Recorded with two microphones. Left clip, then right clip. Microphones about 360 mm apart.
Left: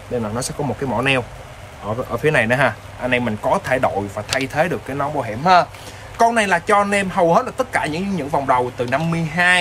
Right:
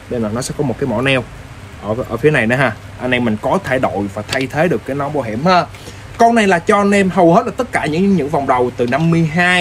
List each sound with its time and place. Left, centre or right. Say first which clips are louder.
0.4 s a man's voice: right 4 dB; centre